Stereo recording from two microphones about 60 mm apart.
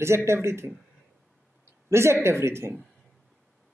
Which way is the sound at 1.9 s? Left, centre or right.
Right.